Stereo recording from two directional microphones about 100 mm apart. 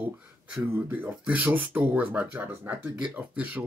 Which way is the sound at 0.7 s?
20° right (ahead or behind).